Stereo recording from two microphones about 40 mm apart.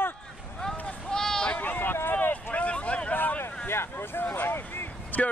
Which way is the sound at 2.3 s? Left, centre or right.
Left.